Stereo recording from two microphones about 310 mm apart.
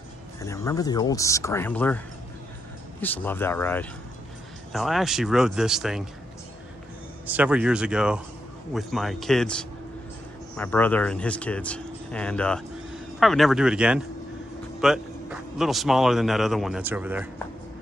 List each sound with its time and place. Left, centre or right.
0.4 s speech: centre
3.0 s speech: centre
7.2 s speech: centre